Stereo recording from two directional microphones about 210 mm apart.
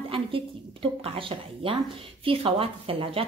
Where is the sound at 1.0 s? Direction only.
25° right (ahead or behind).